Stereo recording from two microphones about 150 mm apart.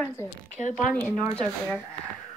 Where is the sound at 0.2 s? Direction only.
15° left (ahead or behind).